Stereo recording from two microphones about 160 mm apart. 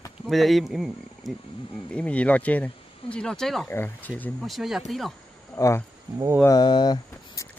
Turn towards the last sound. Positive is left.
turn(degrees=25)  # may be behind; listen again after turning